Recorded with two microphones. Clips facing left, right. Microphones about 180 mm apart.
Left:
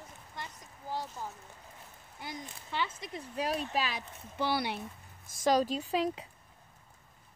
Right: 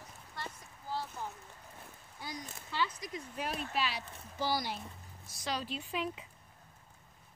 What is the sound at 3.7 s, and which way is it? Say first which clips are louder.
Speech: left 2 dB; 45° left (ahead or behind).